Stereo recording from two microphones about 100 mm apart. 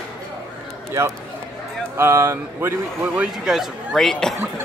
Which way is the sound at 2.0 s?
25° right (ahead or behind).